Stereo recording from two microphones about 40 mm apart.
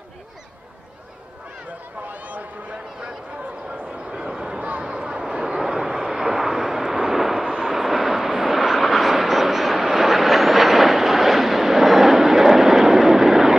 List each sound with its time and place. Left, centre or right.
2.1 s a sound: right
4.2 s a sound: centre
5.3 s vehicle: right
5.6 s vehicle: centre
7.4 s vehicle: right
7.7 s vehicle: centre